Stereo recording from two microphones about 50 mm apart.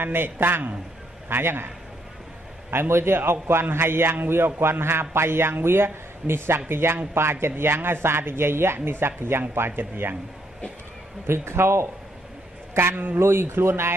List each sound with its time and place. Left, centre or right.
0.0 s speech: right
2.7 s a man's voice: right
11.2 s a man's voice: right
12.9 s speech: right
13.2 s a man's voice: right